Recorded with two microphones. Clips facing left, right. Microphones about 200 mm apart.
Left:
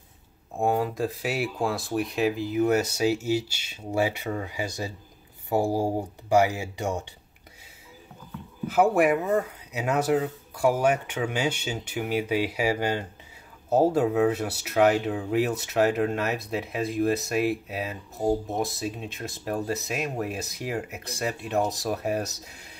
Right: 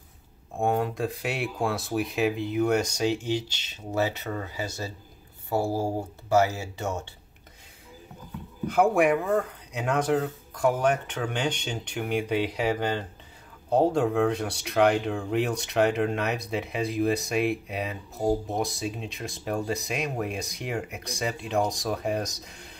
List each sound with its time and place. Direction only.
0.6 s speech: centre (ahead or behind)
8.6 s speech: 5° left (ahead or behind)